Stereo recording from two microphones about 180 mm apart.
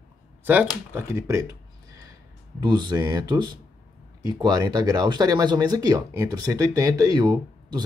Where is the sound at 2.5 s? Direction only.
25° right (ahead or behind).